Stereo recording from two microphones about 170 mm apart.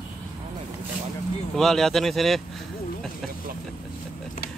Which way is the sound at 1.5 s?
Centre (ahead or behind).